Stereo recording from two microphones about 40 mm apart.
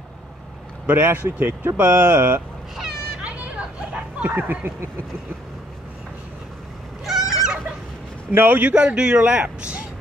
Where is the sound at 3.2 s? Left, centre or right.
Right.